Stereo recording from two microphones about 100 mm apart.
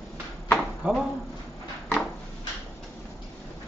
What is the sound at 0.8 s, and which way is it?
Speech, 15° right (ahead or behind).